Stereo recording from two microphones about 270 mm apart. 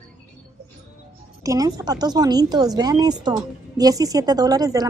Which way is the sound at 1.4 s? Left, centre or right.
Centre.